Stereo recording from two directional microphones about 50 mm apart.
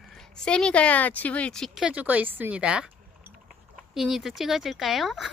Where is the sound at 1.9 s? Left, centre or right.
Right.